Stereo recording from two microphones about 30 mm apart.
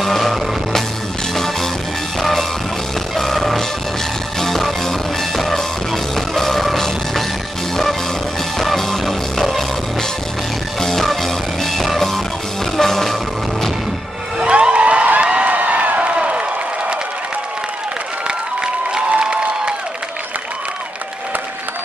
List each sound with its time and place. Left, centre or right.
0.0 s music: centre
3.2 s music: centre
8.5 s music: centre
9.0 s music: centre
10.8 s music: centre
14.5 s a sound: right
15.5 s a sound: right
16.3 s applause: right
18.2 s a sound: right
19.0 s applause: right